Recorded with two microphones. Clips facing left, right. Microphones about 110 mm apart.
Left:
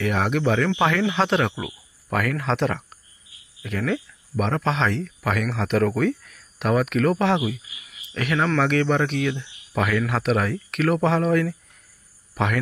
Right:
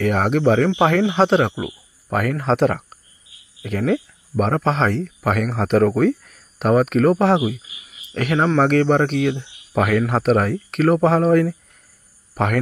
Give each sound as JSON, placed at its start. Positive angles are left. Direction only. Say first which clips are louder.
{"t": 0.0, "sound": "a man's voice", "louder": "right 5 dB", "side_deg": -40}